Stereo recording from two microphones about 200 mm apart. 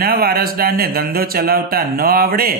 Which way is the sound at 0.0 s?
50° right (ahead or behind).